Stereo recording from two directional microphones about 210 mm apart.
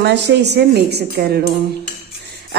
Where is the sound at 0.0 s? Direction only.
55° right (ahead or behind).